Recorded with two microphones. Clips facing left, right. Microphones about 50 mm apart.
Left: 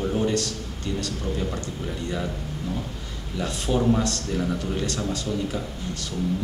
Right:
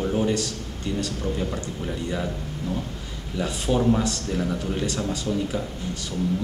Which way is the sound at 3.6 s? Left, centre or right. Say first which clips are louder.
Right 1 dB; centre.